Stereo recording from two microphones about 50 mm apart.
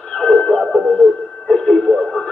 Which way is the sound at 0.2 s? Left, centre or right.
Centre.